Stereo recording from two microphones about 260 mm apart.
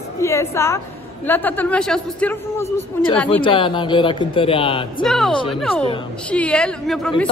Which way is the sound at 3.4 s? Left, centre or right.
Centre.